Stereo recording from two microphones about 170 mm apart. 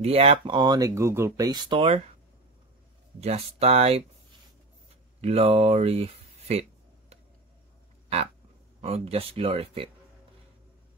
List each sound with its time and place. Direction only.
0.0 s speech: 35° right (ahead or behind)
3.2 s speech: 35° right (ahead or behind)
5.2 s speech: 35° right (ahead or behind)
8.8 s speech: 35° right (ahead or behind)